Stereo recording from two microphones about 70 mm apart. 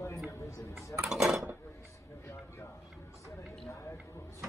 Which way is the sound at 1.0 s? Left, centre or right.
Centre.